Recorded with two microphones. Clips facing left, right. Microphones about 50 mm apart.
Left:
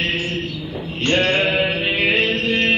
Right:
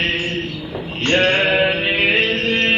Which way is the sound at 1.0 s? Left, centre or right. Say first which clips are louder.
Right 2 dB; right.